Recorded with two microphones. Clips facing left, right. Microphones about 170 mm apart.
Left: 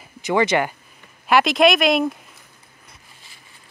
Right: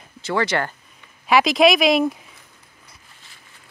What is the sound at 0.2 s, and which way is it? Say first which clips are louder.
Speech: left 3 dB; 15° left (ahead or behind).